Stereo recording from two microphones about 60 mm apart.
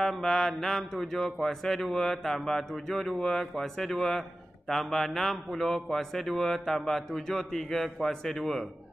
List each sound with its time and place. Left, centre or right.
0.0 s mantra: centre